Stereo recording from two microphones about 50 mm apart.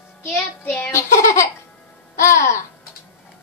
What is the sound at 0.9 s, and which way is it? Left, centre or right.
Baby laughter, left.